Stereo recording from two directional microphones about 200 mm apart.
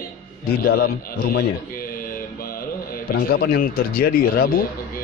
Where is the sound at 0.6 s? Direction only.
45° left (ahead or behind).